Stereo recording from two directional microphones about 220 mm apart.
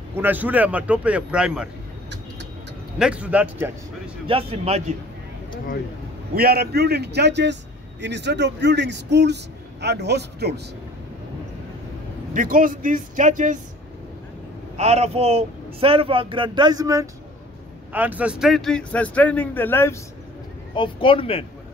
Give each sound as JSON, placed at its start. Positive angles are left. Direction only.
{"t": 0.1, "sound": "speech", "side_deg": -10}
{"t": 3.0, "sound": "speech", "side_deg": -5}
{"t": 4.3, "sound": "speech", "side_deg": -25}
{"t": 6.3, "sound": "speech", "side_deg": -45}
{"t": 12.4, "sound": "speech", "side_deg": -40}
{"t": 14.8, "sound": "speech", "side_deg": -30}
{"t": 20.7, "sound": "speech", "side_deg": 25}